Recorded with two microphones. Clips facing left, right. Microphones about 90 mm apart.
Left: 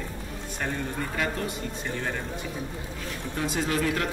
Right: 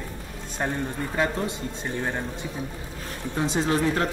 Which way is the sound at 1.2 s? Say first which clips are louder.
Right 5 dB; 30° right (ahead or behind).